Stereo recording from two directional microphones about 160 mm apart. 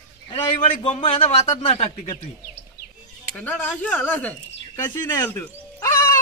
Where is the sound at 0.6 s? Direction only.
50° left (ahead or behind).